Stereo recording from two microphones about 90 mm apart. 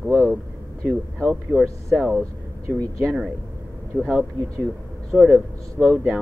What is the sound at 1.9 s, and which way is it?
Speech, 5° left (ahead or behind).